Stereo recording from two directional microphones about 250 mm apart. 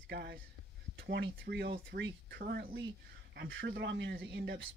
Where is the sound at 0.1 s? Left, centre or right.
Right.